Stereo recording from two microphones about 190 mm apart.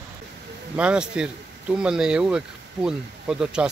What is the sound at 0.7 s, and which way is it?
Speech, 5° right (ahead or behind).